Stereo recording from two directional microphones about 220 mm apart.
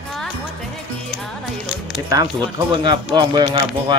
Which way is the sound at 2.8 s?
20° right (ahead or behind).